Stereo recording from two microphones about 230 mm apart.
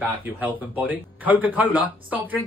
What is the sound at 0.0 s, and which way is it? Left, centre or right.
Speech, centre.